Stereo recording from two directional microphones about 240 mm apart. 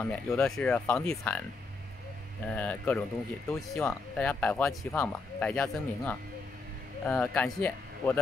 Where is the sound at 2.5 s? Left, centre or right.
Centre.